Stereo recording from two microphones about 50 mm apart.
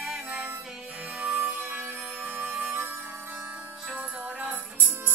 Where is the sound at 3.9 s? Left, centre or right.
Right.